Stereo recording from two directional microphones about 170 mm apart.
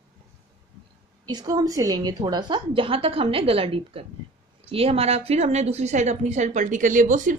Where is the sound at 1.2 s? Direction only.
25° right (ahead or behind).